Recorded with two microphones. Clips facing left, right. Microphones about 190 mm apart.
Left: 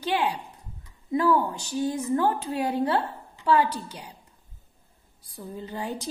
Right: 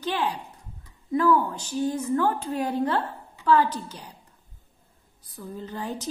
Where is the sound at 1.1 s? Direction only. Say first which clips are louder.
Right 1 dB; 15° left (ahead or behind).